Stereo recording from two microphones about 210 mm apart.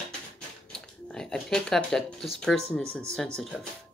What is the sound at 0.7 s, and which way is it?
Speech, 5° left (ahead or behind).